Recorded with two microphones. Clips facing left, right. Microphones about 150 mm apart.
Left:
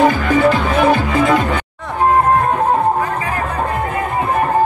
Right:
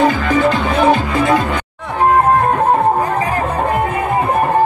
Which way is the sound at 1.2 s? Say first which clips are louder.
Even; 20° right (ahead or behind).